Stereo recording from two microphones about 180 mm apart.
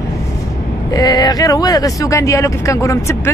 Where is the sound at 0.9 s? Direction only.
20° left (ahead or behind).